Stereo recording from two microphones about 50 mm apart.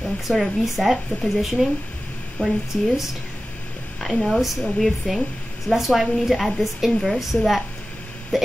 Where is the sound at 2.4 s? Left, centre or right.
Left.